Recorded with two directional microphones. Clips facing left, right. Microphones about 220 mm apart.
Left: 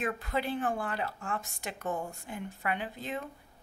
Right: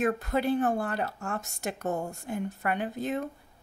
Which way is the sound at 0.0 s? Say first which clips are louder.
Right 6 dB; 45° right (ahead or behind).